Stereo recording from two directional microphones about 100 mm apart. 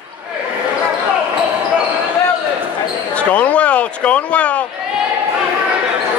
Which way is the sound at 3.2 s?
15° left (ahead or behind).